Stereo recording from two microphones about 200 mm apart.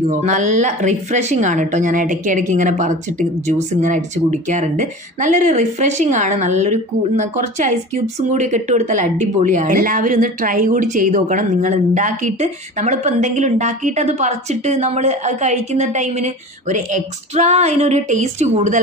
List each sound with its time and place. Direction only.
0.0 s speech: 35° right (ahead or behind)